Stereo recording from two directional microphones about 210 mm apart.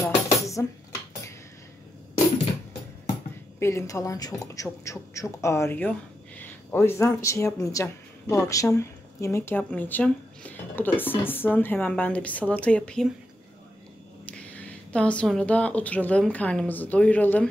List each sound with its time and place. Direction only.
0.4 s cutlery: 15° left (ahead or behind)
3.5 s speech: 15° left (ahead or behind)
14.5 s speech: 5° left (ahead or behind)